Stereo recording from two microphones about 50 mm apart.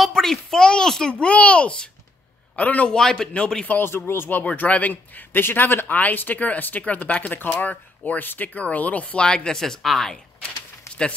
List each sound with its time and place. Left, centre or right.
0.0 s a sound: centre
1.2 s a child's voice: left
2.9 s speech: centre
3.6 s speech: left
3.9 s speech: left
4.5 s speech: left
9.2 s speech: centre